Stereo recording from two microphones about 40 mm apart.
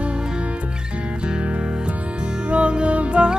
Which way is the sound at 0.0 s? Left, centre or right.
Right.